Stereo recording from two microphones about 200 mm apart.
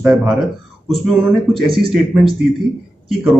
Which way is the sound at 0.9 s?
Centre (ahead or behind).